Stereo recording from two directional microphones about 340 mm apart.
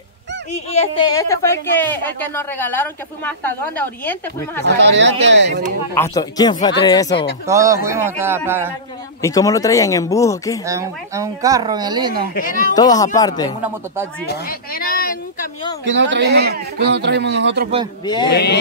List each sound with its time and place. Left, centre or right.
0.7 s a woman's voice: centre
4.6 s speech: right
5.9 s speech: centre
7.4 s speech: centre
9.2 s speech: centre
10.6 s speech: centre
12.4 s speech: left
12.7 s speech: centre
14.2 s a woman's voice: left
15.8 s speech: right
18.0 s speech: centre
18.3 s speech: left